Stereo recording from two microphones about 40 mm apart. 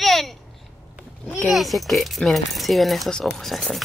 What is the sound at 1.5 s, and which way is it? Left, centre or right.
A child's voice, centre.